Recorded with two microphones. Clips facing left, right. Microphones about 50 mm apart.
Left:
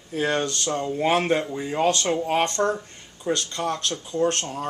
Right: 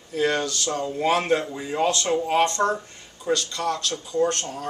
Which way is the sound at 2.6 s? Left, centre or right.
Centre.